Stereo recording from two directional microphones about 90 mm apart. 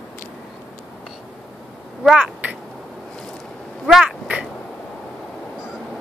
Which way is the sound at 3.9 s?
5° right (ahead or behind).